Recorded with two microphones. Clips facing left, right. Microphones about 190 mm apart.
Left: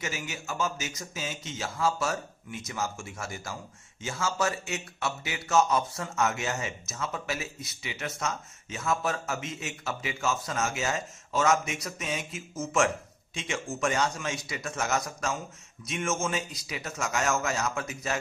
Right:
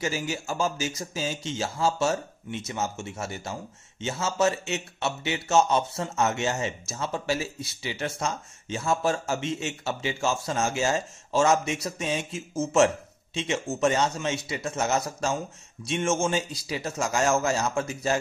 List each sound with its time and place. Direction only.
0.0 s a man's voice: 30° right (ahead or behind)